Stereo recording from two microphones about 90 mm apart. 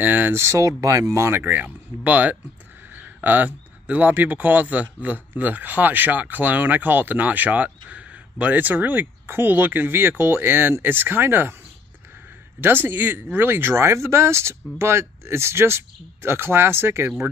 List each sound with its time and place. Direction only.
0.0 s speech: 20° right (ahead or behind)
0.4 s speech: 35° right (ahead or behind)
12.5 s speech: 25° right (ahead or behind)